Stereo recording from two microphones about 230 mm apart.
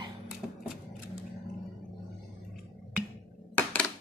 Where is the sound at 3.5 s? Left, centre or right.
Centre.